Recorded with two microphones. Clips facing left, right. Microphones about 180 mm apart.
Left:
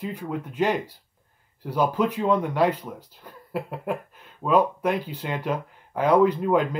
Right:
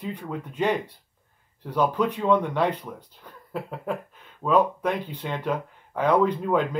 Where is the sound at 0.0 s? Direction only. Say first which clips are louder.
Left 2 dB; 5° left (ahead or behind).